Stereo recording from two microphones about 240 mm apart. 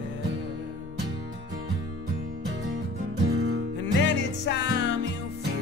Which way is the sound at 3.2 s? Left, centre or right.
Right.